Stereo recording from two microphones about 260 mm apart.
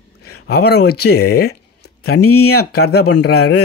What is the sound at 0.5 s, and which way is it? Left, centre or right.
Speech, left.